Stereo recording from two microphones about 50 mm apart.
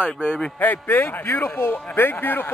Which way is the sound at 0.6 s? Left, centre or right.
Left.